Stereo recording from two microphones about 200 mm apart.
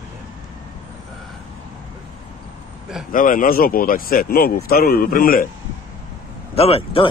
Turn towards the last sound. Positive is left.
turn(degrees=30)  # may be behind; listen again after turning